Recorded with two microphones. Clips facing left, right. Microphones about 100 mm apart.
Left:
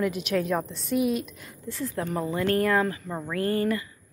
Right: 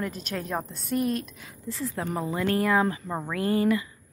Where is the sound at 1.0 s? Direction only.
5° left (ahead or behind).